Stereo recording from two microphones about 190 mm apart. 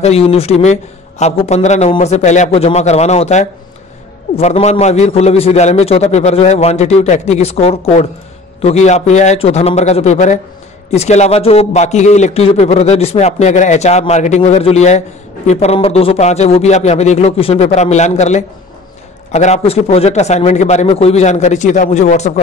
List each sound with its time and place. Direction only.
0.0 s a man's voice: 30° left (ahead or behind)